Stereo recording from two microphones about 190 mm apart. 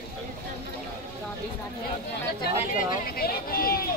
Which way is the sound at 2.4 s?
55° left (ahead or behind).